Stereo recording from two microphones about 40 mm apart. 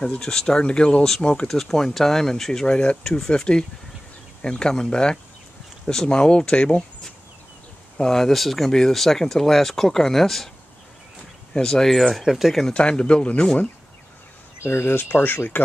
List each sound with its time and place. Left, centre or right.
0.2 s speech: centre
1.5 s speech: centre
2.6 s speech: left
8.0 s speech: centre
11.5 s speech: centre
12.2 s speech: centre
12.7 s speech: left
14.7 s speech: left
15.0 s speech: left